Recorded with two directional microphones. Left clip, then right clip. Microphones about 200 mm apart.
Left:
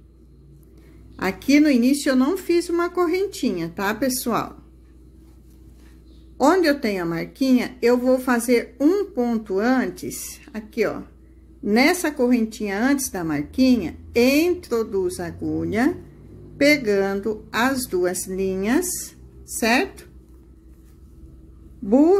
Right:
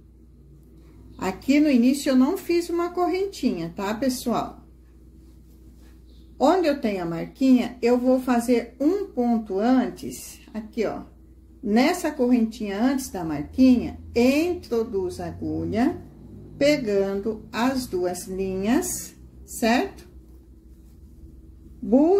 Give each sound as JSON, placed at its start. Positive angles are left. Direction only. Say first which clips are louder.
{"t": 1.2, "sound": "speech", "louder": "left 3 dB", "side_deg": 25}
{"t": 6.3, "sound": "a woman's voice", "louder": "left 2 dB", "side_deg": 30}
{"t": 21.8, "sound": "a woman's voice", "louder": "left 3 dB", "side_deg": 35}